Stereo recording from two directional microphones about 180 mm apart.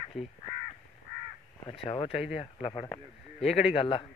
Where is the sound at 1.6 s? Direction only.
30° left (ahead or behind).